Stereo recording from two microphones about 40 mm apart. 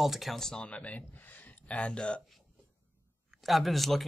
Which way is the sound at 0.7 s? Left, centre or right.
Left.